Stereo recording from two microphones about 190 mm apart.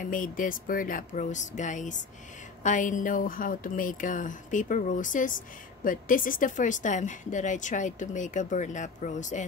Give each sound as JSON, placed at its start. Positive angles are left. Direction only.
{"t": 0.0, "sound": "speech", "side_deg": 45}